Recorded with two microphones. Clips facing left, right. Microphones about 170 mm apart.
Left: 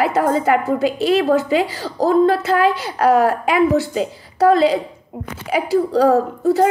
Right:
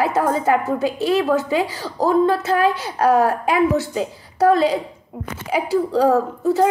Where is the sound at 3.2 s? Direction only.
80° left.